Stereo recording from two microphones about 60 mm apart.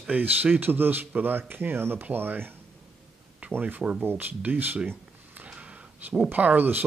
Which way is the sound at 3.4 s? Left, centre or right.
Right.